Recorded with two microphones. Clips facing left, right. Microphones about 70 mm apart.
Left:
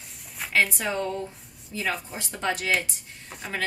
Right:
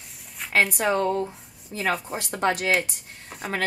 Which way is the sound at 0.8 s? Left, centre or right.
Right.